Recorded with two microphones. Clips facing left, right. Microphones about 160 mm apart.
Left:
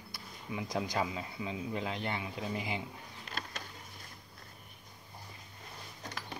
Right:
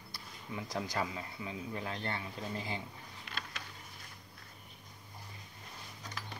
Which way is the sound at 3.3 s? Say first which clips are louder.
Left 3 dB; 40° left (ahead or behind).